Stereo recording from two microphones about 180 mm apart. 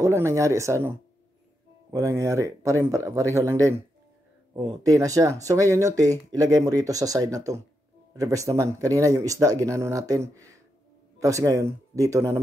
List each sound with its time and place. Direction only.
0.0 s speech: 15° right (ahead or behind)